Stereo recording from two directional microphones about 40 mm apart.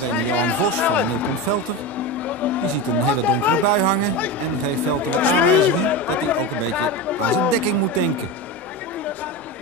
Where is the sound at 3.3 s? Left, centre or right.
Left.